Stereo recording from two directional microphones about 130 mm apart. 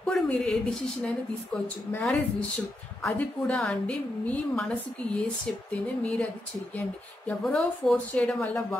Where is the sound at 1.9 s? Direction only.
15° left (ahead or behind).